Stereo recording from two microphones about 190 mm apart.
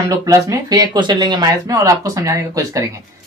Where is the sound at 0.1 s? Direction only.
15° right (ahead or behind).